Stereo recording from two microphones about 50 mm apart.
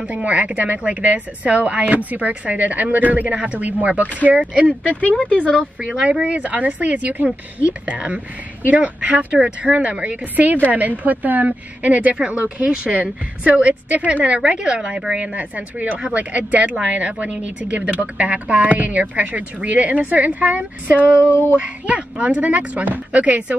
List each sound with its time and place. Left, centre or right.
0.0 s a woman's voice: right
5.2 s speech: left
5.8 s a woman's voice: right